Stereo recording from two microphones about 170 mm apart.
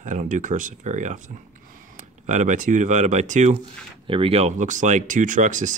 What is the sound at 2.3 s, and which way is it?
Speech, 45° right (ahead or behind).